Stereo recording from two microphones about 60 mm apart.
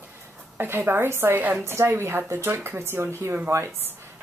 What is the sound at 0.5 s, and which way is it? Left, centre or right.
Speech, right.